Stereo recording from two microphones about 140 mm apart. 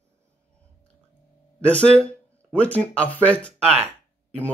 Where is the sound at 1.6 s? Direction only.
10° left (ahead or behind).